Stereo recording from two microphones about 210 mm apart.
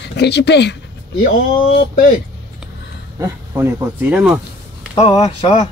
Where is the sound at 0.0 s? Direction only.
55° left (ahead or behind).